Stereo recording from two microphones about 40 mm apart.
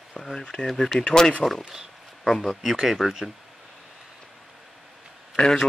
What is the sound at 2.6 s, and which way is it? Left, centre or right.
Speech, centre.